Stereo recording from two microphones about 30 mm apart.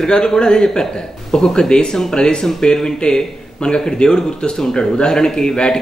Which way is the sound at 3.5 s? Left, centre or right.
Left.